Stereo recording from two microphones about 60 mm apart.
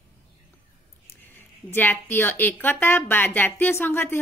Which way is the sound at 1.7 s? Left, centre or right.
Left.